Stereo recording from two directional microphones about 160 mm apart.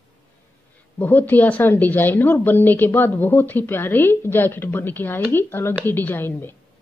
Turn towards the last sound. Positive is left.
turn(degrees=15)  # may be behind; listen again after turning